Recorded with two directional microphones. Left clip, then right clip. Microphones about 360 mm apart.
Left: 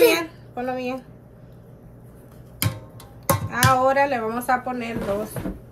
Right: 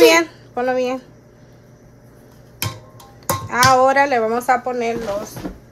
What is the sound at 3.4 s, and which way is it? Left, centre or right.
Speech, centre.